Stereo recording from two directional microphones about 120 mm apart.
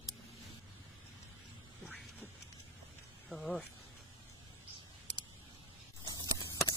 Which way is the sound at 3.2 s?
Centre (ahead or behind).